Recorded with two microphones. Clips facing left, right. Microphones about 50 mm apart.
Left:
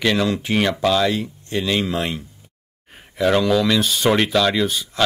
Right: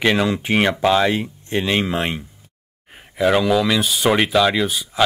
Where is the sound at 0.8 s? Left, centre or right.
Right.